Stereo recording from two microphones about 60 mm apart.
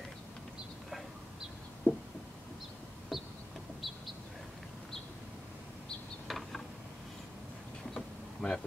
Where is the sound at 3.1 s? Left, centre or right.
Centre.